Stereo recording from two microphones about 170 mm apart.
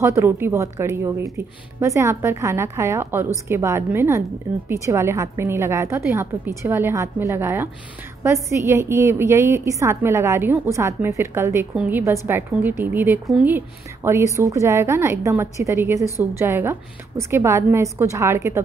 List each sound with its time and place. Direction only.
0.0 s a woman's voice: 15° right (ahead or behind)